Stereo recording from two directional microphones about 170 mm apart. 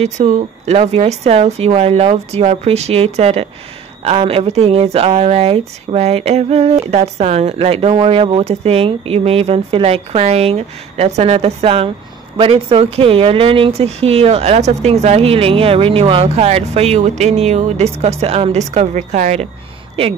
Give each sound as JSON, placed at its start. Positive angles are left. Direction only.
{"t": 0.0, "sound": "speech", "side_deg": -40}